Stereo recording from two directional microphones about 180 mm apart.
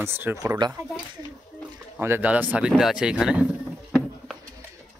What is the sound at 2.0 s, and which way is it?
Speech, 10° right (ahead or behind).